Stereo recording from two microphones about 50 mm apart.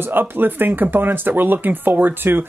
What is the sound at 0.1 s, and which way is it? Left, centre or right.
Speech, right.